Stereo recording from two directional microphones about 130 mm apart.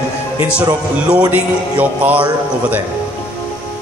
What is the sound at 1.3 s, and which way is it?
Music, 10° right (ahead or behind).